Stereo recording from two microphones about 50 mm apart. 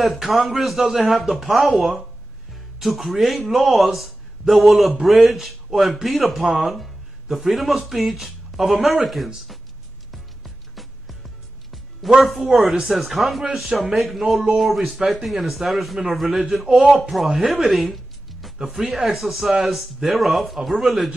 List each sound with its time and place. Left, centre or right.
0.0 s speech: centre
10.1 s music: centre
12.4 s speech: centre